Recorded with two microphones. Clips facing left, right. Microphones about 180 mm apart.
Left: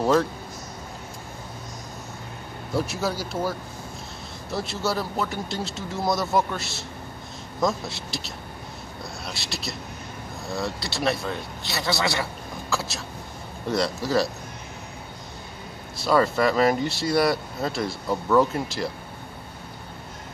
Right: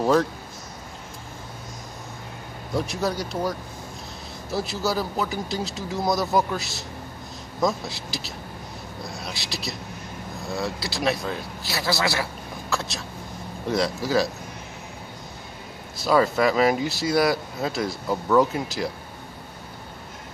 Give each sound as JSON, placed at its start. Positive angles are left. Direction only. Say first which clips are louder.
{"t": 0.0, "sound": "speech", "louder": "right 1 dB", "side_deg": 0}
{"t": 2.7, "sound": "speech", "louder": "right 1 dB", "side_deg": 5}
{"t": 16.0, "sound": "speech", "louder": "right 1 dB", "side_deg": 0}